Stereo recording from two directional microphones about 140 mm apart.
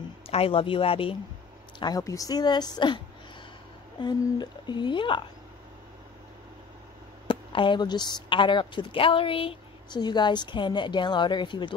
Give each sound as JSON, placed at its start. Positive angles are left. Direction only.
{"t": 0.3, "sound": "a woman's voice", "side_deg": 45}
{"t": 1.8, "sound": "speech", "side_deg": 25}
{"t": 4.0, "sound": "a woman's voice", "side_deg": 30}
{"t": 7.2, "sound": "a woman's voice", "side_deg": 35}